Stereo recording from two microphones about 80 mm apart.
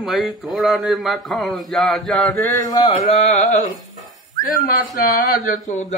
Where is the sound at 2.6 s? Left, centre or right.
Left.